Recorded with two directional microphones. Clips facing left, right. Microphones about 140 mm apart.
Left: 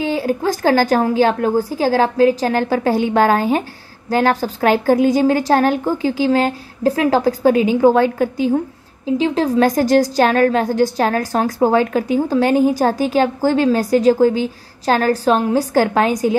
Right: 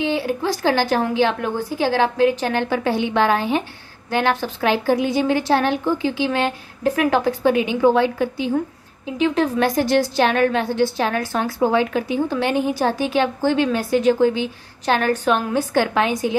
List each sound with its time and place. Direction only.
0.0 s a woman's voice: 40° left (ahead or behind)